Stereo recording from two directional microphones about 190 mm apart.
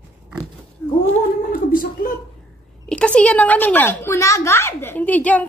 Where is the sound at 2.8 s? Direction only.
5° left (ahead or behind).